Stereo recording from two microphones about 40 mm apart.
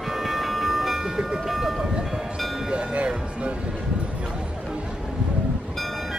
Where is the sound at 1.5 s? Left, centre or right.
Centre.